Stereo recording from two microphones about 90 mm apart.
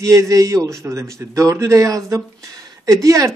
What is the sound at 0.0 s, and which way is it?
A man's voice, 35° right (ahead or behind).